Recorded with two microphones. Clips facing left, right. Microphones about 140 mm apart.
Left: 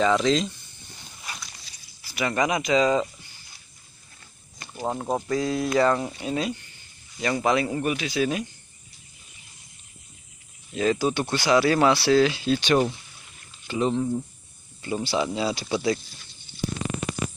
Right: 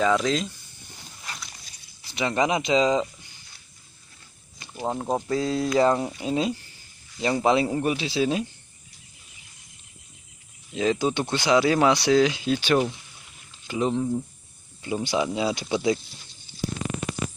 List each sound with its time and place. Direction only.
0.0 s speech: 5° right (ahead or behind)
1.2 s dog: 10° left (ahead or behind)
2.0 s speech: 25° right (ahead or behind)
4.7 s speech: centre (ahead or behind)
5.3 s speech: 30° right (ahead or behind)
10.7 s speech: 15° right (ahead or behind)